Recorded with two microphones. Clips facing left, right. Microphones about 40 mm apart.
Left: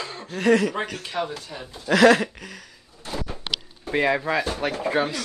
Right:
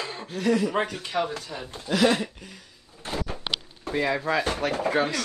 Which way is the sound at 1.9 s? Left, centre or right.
Left.